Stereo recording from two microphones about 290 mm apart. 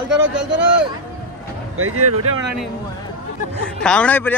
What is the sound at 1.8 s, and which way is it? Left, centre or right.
Speech, right.